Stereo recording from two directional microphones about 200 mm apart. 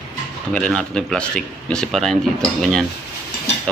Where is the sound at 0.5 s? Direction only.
5° left (ahead or behind).